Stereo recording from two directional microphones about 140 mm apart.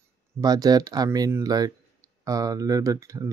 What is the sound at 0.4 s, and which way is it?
Speech, 30° right (ahead or behind).